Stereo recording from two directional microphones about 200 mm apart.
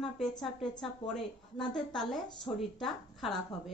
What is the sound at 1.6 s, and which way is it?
A woman's voice, 5° left (ahead or behind).